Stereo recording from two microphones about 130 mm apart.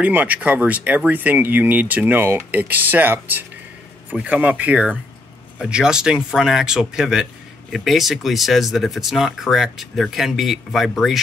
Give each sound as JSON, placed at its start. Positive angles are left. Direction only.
{"t": 0.0, "sound": "speech", "side_deg": -10}